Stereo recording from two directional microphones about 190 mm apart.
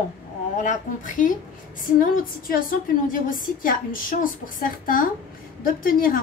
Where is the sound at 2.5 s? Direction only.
45° left (ahead or behind).